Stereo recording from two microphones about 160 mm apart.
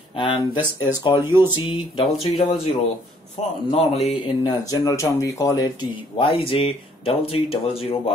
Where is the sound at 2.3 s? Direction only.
35° left (ahead or behind).